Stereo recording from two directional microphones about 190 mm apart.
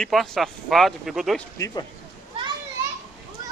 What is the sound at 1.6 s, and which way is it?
Speech, 20° left (ahead or behind).